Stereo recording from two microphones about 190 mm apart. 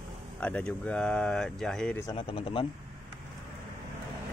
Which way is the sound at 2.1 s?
30° left (ahead or behind).